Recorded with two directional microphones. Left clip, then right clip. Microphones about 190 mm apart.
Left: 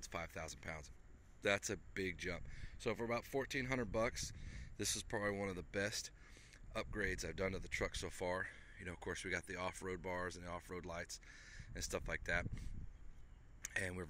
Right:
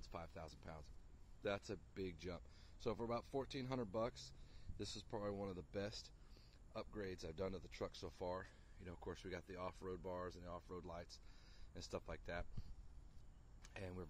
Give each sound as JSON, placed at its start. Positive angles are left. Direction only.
{"t": 0.1, "sound": "speech", "side_deg": 5}
{"t": 13.7, "sound": "speech", "side_deg": 5}